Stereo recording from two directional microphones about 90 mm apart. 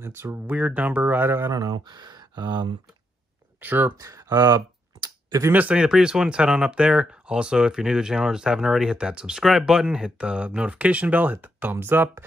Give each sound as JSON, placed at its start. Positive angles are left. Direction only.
{"t": 0.0, "sound": "speech", "side_deg": -25}
{"t": 1.5, "sound": "speech", "side_deg": -45}
{"t": 3.6, "sound": "speech", "side_deg": -20}
{"t": 3.9, "sound": "typing", "side_deg": -35}
{"t": 5.5, "sound": "speech", "side_deg": -15}